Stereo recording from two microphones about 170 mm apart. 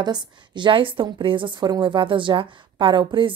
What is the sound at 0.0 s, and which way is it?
A woman's voice, 25° right (ahead or behind).